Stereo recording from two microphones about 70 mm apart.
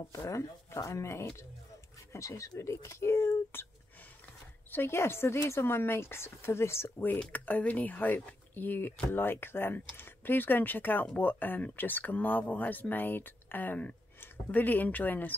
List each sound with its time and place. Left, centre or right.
0.1 s speech: left
4.6 s speech: left
7.3 s speech: left